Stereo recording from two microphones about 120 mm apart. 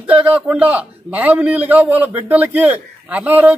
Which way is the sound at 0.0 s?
15° right (ahead or behind).